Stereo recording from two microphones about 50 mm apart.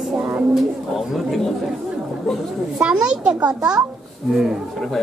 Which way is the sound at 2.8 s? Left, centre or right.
Centre.